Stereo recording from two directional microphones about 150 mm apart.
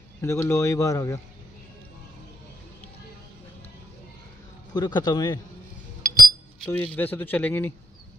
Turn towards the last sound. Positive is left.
turn(degrees=10)  # may be behind; listen again after turning